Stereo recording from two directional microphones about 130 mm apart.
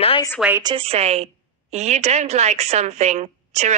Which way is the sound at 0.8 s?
50° right (ahead or behind).